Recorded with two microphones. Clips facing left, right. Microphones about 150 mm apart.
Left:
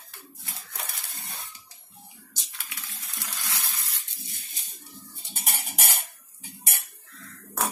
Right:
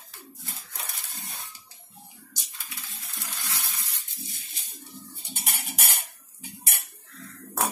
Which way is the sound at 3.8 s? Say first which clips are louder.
Right 2 dB; 75° left (ahead or behind).